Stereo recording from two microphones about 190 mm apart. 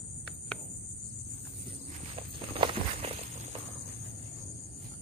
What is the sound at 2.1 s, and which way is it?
Walk, 30° right (ahead or behind).